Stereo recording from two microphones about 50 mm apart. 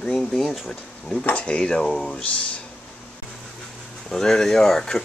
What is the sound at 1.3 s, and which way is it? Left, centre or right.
Speech, left.